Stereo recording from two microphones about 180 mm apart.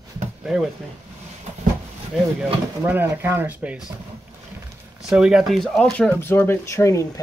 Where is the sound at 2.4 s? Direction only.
10° right (ahead or behind).